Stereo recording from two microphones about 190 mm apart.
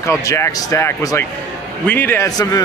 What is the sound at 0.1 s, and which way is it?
A man's voice, 15° left (ahead or behind).